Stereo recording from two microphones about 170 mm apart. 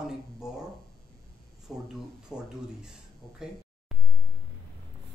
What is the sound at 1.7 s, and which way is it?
A woman's voice, centre (ahead or behind).